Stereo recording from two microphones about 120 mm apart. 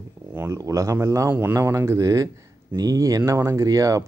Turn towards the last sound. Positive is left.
turn(degrees=-25)  # may be behind; listen again after turning